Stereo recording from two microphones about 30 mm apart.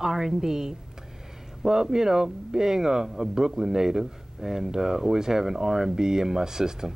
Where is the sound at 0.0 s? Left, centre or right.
Centre.